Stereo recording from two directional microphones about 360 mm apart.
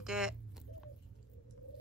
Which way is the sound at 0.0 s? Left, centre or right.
Centre.